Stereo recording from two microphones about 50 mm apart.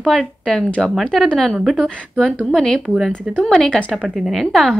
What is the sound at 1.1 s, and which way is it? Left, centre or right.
A woman's voice, centre.